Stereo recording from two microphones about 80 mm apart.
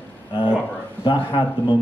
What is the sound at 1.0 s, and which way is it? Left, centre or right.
Speech, left.